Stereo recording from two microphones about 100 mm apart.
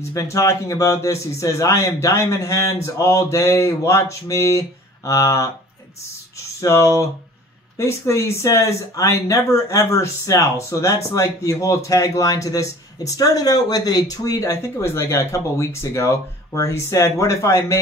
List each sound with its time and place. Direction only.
0.1 s a man's voice: 35° left (ahead or behind)
6.6 s a man's voice: 30° left (ahead or behind)